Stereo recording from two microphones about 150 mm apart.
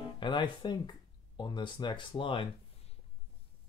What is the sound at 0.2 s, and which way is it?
Speech, 30° left (ahead or behind).